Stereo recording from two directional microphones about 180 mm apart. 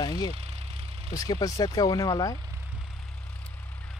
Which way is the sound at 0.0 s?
20° left (ahead or behind).